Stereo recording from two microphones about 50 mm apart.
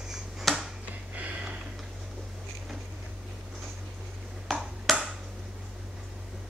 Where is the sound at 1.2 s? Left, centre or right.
Right.